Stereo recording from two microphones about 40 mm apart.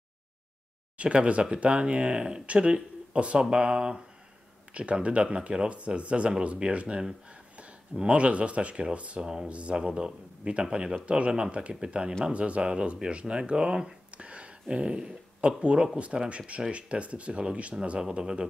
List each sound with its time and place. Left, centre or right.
0.9 s speech: right
5.0 s speech: right
7.2 s a sound: right
8.0 s speech: right
9.2 s music: centre
9.5 s speech: right
9.8 s speech: centre
11.1 s speech: right
14.1 s speech: right
18.2 s music: centre